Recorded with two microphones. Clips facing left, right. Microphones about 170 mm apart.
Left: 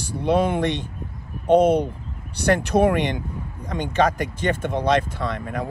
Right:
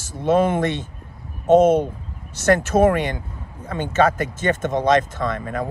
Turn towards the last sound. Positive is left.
turn(degrees=10)  # may be behind; listen again after turning